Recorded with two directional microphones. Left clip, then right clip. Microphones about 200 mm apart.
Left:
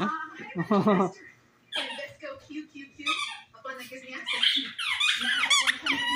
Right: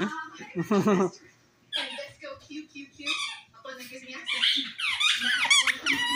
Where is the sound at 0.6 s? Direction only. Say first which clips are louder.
Left 1 dB; 10° left (ahead or behind).